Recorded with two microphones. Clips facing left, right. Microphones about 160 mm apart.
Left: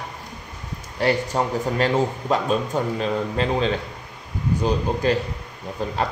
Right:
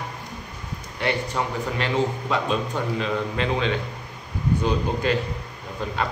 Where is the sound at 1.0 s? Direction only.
40° left (ahead or behind).